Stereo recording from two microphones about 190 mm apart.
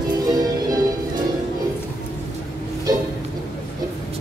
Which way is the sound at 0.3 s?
20° right (ahead or behind).